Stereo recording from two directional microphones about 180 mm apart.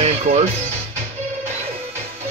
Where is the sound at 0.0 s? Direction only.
35° right (ahead or behind).